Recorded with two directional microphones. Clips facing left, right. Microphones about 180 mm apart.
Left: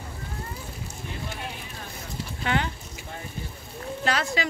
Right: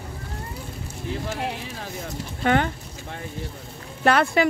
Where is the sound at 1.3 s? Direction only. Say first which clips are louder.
Right 7 dB; 80° right.